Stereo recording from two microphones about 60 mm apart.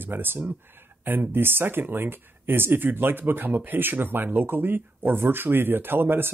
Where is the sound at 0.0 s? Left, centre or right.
Right.